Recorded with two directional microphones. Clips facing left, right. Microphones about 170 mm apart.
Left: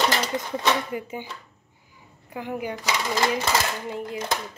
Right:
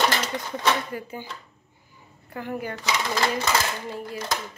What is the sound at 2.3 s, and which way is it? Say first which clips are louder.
Speech: left 1 dB; 15° left (ahead or behind).